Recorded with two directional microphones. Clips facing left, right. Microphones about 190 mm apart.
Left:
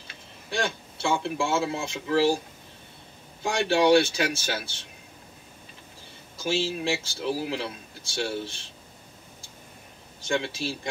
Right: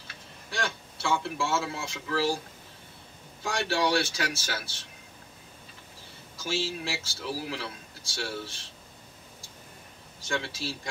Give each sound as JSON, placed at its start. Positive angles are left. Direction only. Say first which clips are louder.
{"t": 0.5, "sound": "a man's voice", "louder": "left 5 dB", "side_deg": 20}
{"t": 3.4, "sound": "a man's voice", "louder": "left 7 dB", "side_deg": 20}
{"t": 6.3, "sound": "a man's voice", "louder": "left 5 dB", "side_deg": 20}
{"t": 10.2, "sound": "a man's voice", "louder": "left 5 dB", "side_deg": 20}